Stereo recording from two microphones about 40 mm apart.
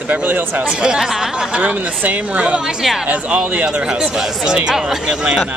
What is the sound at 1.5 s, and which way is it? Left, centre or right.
Speech, right.